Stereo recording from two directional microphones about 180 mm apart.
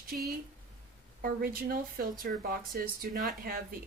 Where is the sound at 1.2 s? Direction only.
55° right (ahead or behind).